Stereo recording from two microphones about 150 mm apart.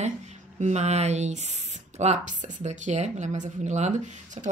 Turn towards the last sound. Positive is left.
turn(degrees=-50)  # may be behind; listen again after turning